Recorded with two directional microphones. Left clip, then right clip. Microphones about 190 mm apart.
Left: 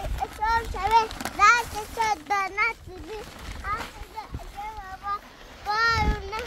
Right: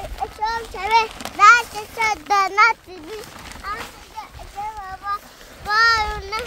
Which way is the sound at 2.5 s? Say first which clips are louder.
Right 11 dB; 45° right (ahead or behind).